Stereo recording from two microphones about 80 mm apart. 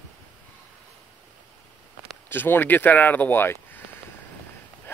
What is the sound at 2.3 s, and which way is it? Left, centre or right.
Speech, left.